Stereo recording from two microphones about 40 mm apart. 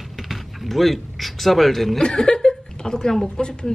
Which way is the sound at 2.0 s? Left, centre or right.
Left.